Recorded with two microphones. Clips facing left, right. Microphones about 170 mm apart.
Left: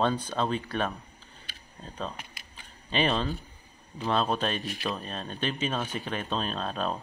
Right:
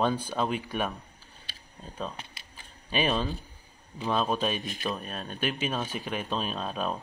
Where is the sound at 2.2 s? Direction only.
30° right (ahead or behind).